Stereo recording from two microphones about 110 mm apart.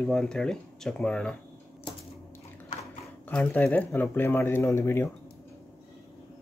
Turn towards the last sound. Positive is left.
turn(degrees=25)  # may be behind; listen again after turning